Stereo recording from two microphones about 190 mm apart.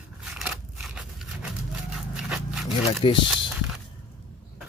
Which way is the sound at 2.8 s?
30° left (ahead or behind).